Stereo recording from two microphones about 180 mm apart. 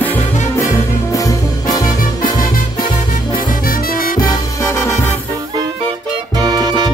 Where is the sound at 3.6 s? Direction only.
55° left (ahead or behind).